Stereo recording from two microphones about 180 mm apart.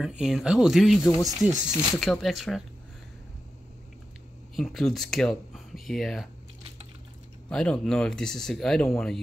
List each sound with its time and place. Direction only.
0.0 s speech: 5° right (ahead or behind)
4.6 s speech: centre (ahead or behind)
7.4 s speech: 5° left (ahead or behind)